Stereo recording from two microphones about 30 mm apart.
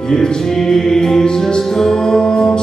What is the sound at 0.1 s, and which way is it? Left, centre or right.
Music, left.